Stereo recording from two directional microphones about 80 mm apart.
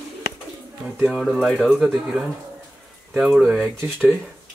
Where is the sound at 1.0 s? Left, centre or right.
Centre.